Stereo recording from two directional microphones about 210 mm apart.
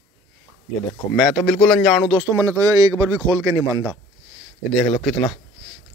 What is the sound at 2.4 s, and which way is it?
A man's voice, 15° right (ahead or behind).